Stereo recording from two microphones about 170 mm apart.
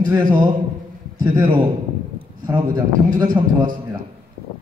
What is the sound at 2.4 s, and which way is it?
Speech, 20° right (ahead or behind).